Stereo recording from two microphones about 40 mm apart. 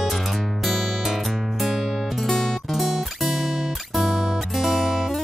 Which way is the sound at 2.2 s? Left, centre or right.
Centre.